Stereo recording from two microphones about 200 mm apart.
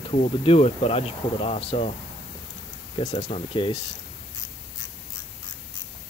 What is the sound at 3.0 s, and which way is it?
Speech, 35° left (ahead or behind).